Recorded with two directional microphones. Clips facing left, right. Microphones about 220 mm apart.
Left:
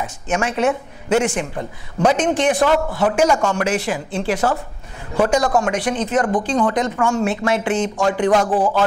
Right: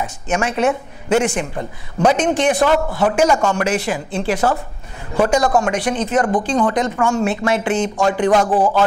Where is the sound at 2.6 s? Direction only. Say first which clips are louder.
Right 1 dB; 25° right (ahead or behind); by 4.0 s 10° right (ahead or behind).